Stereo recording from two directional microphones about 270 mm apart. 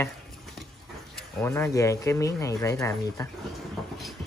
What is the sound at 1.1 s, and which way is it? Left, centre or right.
Speech, centre.